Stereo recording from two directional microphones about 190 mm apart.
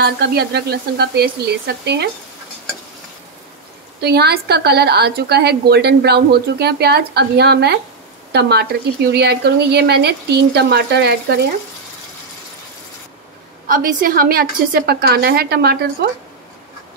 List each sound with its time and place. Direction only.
0.0 s a woman's voice: 60° right (ahead or behind)
4.0 s a woman's voice: 60° right (ahead or behind)
13.7 s a woman's voice: 50° right (ahead or behind)